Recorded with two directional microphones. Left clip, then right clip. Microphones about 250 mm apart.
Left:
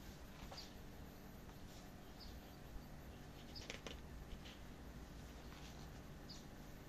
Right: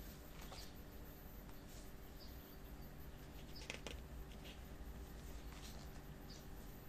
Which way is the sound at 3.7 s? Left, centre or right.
Centre.